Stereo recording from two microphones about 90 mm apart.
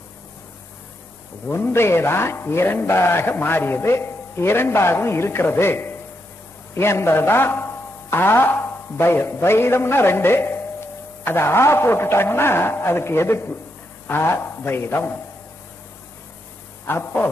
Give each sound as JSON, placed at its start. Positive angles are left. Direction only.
{"t": 1.5, "sound": "a man's voice", "side_deg": 30}
{"t": 16.8, "sound": "a man's voice", "side_deg": 25}